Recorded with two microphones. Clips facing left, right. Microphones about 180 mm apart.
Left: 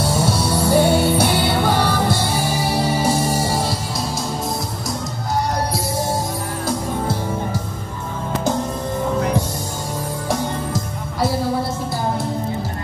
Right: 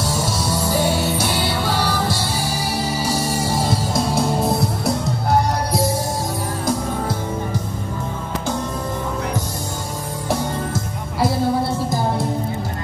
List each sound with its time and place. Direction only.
0.0 s music: 60° left (ahead or behind)
3.9 s music: 60° right (ahead or behind)